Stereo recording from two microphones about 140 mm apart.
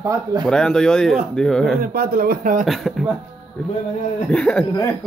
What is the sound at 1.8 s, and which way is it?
Speech, 90° right.